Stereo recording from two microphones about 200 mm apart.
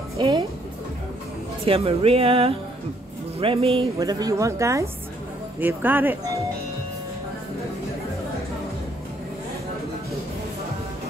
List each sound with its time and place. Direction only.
0.2 s speech: 20° right (ahead or behind)
1.7 s speech: 30° right (ahead or behind); by 6.1 s 10° right (ahead or behind)